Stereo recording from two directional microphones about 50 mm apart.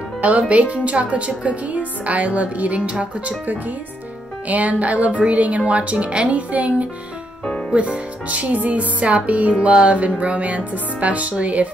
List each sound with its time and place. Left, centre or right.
0.2 s a woman's voice: right
4.5 s a woman's voice: right